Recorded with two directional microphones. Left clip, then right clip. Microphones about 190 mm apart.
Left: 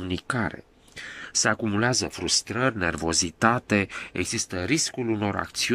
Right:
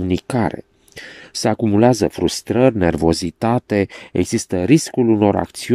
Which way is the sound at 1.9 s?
40° right (ahead or behind).